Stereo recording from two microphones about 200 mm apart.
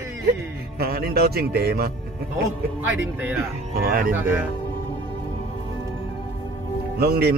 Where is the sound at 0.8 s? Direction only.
50° right (ahead or behind).